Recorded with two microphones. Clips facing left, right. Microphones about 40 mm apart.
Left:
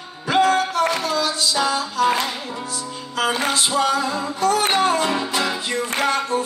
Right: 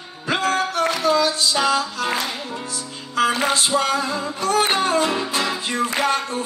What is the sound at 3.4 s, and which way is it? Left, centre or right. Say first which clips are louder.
Music: even; right.